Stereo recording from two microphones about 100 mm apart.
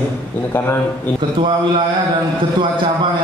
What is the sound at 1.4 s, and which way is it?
Speech, 50° right (ahead or behind).